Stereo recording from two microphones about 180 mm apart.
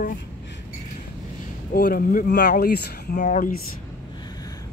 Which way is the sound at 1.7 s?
55° left (ahead or behind).